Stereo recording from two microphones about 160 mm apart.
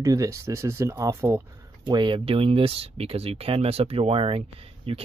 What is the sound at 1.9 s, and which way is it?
Speech, 30° right (ahead or behind).